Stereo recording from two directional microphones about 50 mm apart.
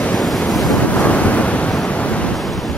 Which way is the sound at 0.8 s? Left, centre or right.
Left.